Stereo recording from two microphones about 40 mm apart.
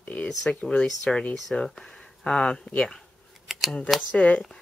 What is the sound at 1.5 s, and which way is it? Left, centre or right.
Speech, centre.